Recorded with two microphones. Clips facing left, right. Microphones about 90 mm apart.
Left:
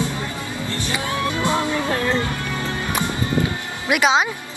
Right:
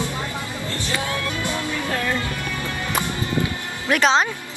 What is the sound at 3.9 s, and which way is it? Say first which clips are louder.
Speech: even; 10° left (ahead or behind).